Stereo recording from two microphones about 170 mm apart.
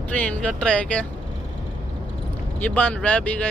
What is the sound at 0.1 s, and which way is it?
Speech, 10° left (ahead or behind).